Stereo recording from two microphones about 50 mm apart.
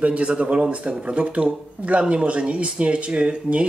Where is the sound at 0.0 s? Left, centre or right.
Right.